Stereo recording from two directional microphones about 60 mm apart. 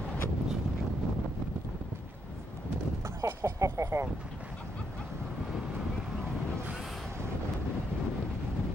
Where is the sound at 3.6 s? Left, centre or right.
Right.